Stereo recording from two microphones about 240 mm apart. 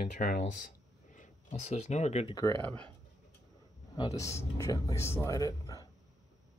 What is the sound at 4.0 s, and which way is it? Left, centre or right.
Speech, centre.